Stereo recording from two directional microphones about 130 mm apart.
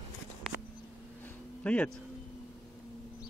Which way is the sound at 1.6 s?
10° left (ahead or behind).